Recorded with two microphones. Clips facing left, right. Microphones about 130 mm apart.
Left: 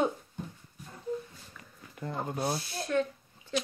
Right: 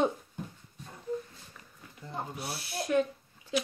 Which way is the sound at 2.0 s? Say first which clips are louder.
Left 6 dB; 55° left (ahead or behind).